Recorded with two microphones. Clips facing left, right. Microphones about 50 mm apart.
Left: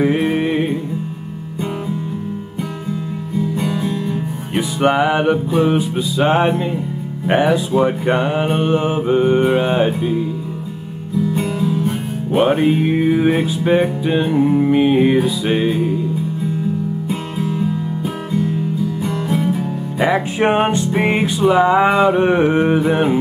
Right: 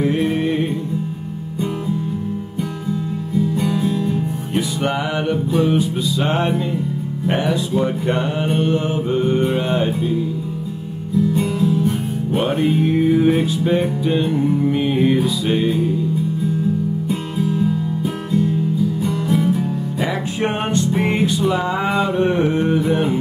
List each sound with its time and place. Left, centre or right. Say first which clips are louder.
0.0 s music: left 2 dB; left
3.5 s guitar: right 1 dB; centre
3.9 s music: right 1 dB; centre
4.6 s music: left 6 dB; left
11.5 s music: right 1 dB; centre
17.4 s guitar: right 2 dB; centre
19.2 s music: right 1 dB; centre
20.0 s music: left 7 dB; left